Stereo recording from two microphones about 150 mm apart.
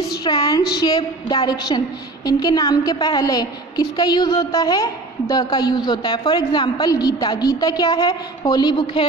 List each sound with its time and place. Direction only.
0.1 s a woman's voice: 25° left (ahead or behind)